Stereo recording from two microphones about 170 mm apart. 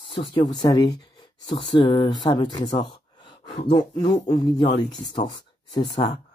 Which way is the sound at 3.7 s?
25° left (ahead or behind).